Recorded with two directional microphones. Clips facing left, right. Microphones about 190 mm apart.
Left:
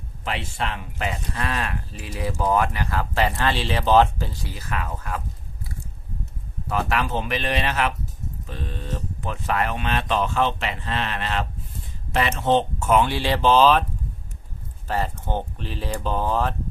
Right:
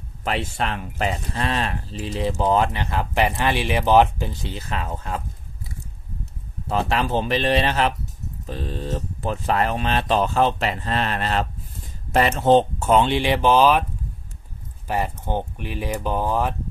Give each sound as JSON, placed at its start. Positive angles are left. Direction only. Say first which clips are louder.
{"t": 0.2, "sound": "speech", "louder": "right 4 dB", "side_deg": -40}
{"t": 6.7, "sound": "speech", "louder": "right 2 dB", "side_deg": -30}
{"t": 14.9, "sound": "speech", "louder": "right 1 dB", "side_deg": -15}